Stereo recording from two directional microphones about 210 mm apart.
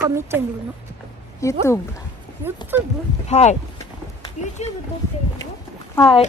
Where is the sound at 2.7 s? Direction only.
10° right (ahead or behind).